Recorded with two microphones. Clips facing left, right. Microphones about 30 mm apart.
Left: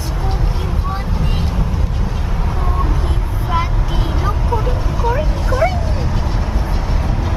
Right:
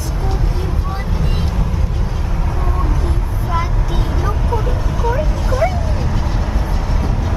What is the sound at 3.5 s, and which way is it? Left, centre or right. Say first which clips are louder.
Vehicle: left 1 dB; left.